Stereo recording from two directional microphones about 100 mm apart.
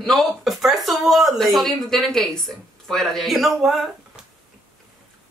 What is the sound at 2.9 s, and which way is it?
Music, centre (ahead or behind).